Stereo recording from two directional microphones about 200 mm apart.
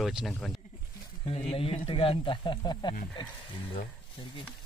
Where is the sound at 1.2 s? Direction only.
30° left (ahead or behind).